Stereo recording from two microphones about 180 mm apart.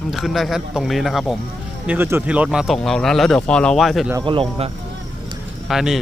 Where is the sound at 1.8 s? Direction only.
10° right (ahead or behind).